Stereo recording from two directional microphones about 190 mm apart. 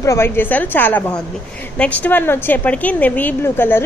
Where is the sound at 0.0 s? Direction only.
15° left (ahead or behind).